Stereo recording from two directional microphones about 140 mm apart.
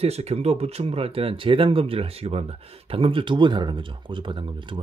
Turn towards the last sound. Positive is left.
turn(degrees=-35)  # may be behind; listen again after turning